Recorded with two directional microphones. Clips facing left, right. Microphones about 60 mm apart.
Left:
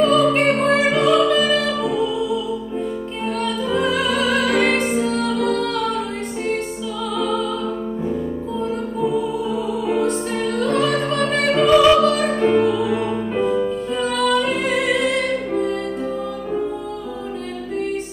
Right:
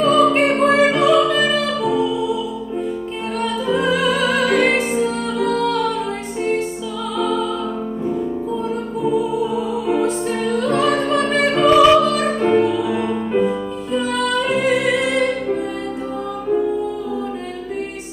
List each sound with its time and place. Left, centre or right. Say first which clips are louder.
0.0 s music: right 1 dB; centre
3.3 s music: right 2 dB; centre
9.9 s music: right 1 dB; centre